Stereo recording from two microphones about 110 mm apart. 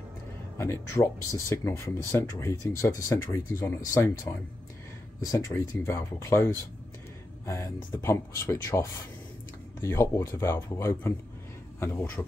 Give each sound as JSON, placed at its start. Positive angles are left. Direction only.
{"t": 0.6, "sound": "speech", "side_deg": 25}
{"t": 5.5, "sound": "speech", "side_deg": 25}